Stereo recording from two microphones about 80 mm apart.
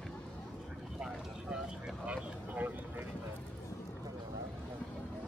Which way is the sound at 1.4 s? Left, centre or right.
Centre.